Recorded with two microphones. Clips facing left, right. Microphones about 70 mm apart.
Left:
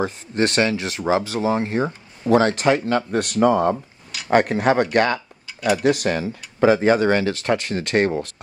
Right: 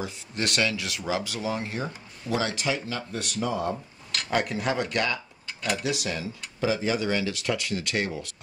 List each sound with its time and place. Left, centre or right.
0.0 s speech: left
3.7 s a sound: centre
4.3 s speech: left
5.5 s dishes: centre
5.8 s speech: left